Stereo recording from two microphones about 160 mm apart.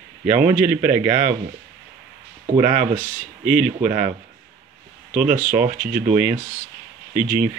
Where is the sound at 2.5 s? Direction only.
50° right (ahead or behind).